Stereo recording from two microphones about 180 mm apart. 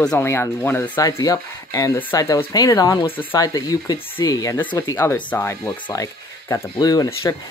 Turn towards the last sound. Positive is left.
turn(degrees=20)  # may be behind; listen again after turning